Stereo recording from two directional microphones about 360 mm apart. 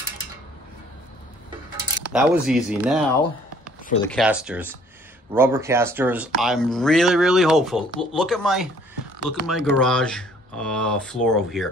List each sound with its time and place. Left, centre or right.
2.1 s speech: centre
3.8 s speech: centre
4.1 s speech: centre